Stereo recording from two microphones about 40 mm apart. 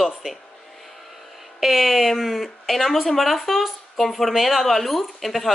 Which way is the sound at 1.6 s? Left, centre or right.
Centre.